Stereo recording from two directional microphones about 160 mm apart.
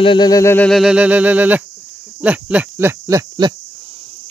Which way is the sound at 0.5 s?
5° left (ahead or behind).